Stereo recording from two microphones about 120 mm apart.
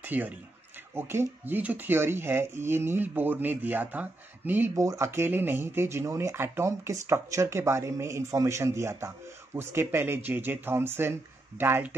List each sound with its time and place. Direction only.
0.0 s speech: 15° right (ahead or behind)
4.7 s speech: 25° right (ahead or behind)